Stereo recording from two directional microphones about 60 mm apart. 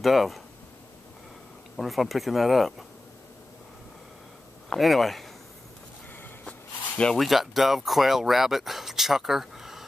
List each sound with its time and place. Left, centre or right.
0.0 s speech: centre
1.8 s speech: centre
4.6 s speech: centre
6.4 s a sound: centre
7.2 s speech: centre